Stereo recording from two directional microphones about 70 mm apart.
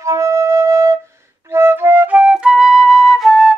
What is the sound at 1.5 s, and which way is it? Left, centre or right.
Flute, right.